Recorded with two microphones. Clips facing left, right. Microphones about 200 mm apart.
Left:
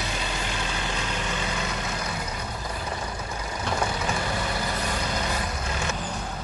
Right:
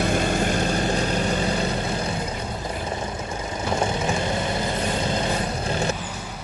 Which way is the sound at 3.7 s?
25° right (ahead or behind).